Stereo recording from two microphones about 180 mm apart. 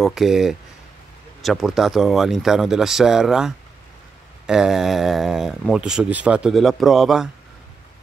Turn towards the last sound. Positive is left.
turn(degrees=0)  # may be behind; listen again after turning